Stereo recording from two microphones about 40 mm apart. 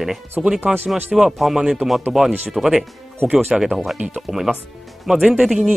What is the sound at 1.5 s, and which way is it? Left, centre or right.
Speech, centre.